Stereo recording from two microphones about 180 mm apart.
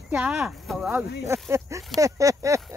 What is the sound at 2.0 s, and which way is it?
Speech, 15° right (ahead or behind).